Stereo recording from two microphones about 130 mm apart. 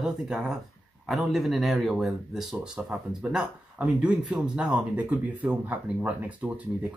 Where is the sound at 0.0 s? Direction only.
5° right (ahead or behind).